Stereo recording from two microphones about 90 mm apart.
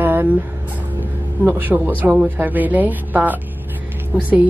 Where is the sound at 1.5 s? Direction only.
20° right (ahead or behind).